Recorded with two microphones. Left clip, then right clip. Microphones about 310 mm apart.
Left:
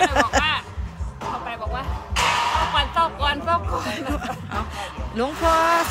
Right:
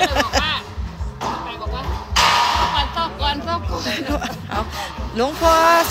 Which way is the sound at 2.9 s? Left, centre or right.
Left.